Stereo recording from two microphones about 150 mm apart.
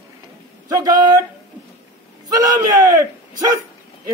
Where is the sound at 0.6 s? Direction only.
25° right (ahead or behind).